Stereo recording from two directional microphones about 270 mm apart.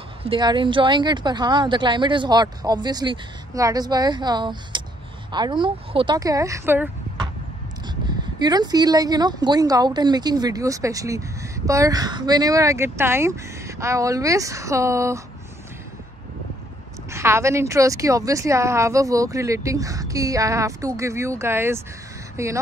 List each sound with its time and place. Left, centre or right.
0.2 s speech: centre
17.1 s speech: centre